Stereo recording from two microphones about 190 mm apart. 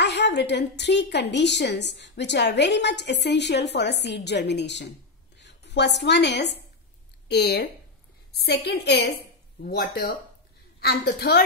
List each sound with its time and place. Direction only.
0.0 s a woman's voice: 65° left (ahead or behind)